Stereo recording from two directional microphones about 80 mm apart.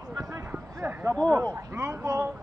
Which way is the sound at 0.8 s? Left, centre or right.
Right.